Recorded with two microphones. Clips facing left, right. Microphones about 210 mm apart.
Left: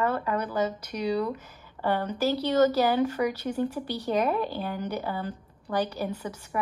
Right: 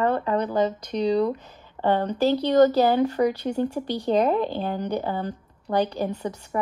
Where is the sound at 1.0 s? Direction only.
35° right (ahead or behind).